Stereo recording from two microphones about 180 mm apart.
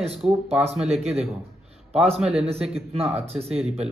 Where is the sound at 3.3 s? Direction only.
35° right (ahead or behind).